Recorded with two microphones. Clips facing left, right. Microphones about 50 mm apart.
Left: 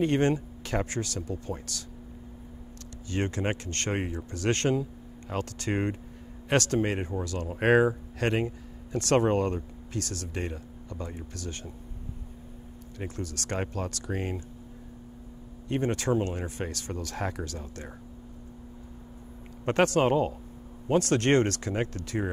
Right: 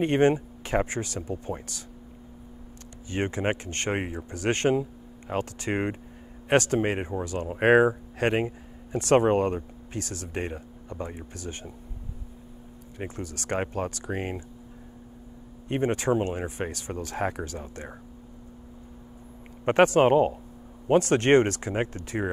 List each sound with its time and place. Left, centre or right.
0.0 s speech: right
3.1 s speech: right
13.0 s speech: right
15.7 s speech: right
19.6 s speech: right